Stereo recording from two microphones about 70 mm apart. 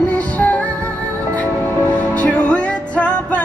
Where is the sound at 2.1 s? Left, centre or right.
Centre.